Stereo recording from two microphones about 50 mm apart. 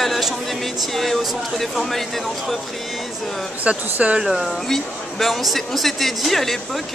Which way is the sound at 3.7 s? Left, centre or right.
Right.